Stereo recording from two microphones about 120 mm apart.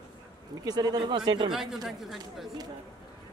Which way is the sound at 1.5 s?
5° right (ahead or behind).